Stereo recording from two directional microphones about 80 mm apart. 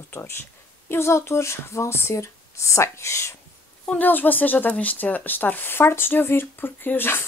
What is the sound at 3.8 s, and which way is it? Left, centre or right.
Speech, left.